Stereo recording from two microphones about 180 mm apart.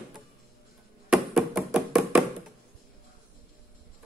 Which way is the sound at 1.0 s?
5° right (ahead or behind).